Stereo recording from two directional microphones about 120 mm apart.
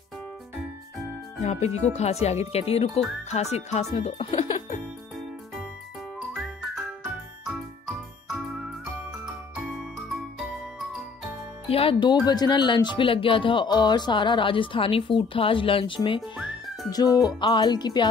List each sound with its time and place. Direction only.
1.4 s speech: 65° left (ahead or behind)
3.9 s speech: 55° left (ahead or behind)
4.6 s music: 80° left
6.3 s music: centre (ahead or behind)
7.4 s jingle: 5° right (ahead or behind)
9.2 s music: 5° right (ahead or behind)
11.7 s speech: 50° left (ahead or behind)
16.4 s speech: 35° left (ahead or behind)